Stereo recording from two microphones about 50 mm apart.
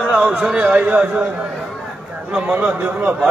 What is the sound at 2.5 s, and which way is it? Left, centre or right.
Speech, right.